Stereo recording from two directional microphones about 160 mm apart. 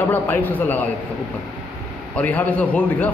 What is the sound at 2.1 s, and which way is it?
Speech, 10° left (ahead or behind).